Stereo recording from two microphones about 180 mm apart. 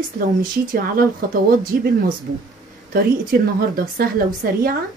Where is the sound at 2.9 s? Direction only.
55° right (ahead or behind).